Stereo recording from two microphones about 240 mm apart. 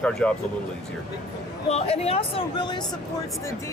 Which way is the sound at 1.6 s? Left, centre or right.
Left.